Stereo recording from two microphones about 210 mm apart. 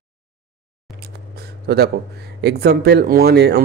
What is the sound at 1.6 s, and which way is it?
A man's voice, 50° right (ahead or behind).